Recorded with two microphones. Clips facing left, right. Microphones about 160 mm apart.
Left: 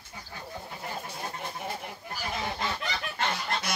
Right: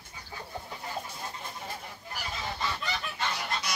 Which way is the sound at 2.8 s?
55° left (ahead or behind).